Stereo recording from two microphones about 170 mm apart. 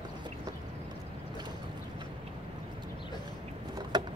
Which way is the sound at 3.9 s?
25° right (ahead or behind).